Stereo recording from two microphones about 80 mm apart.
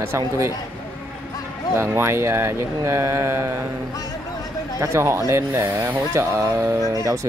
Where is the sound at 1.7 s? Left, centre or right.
Right.